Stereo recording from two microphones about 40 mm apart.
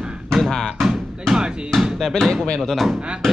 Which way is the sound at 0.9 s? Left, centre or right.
Centre.